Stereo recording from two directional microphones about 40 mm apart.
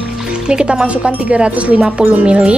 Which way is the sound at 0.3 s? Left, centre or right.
Right.